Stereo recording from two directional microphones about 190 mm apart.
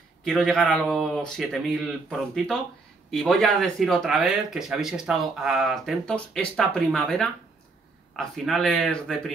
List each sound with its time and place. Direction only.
0.2 s speech: centre (ahead or behind)